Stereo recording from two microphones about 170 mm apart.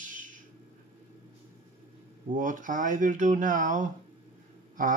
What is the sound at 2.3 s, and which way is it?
Speech, 50° right (ahead or behind).